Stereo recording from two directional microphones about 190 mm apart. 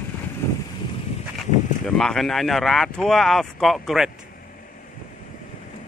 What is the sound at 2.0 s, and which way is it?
Speech, centre (ahead or behind).